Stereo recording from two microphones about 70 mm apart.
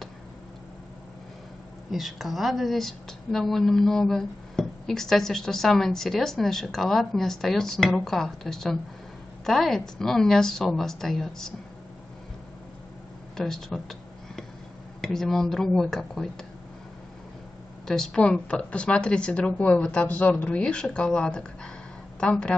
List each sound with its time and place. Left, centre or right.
1.9 s a woman's voice: centre
13.4 s a woman's voice: centre
17.8 s speech: centre